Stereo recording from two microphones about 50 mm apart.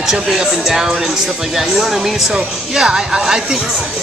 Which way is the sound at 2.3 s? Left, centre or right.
Centre.